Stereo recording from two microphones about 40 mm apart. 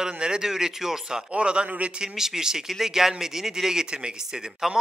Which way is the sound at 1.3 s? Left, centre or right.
Right.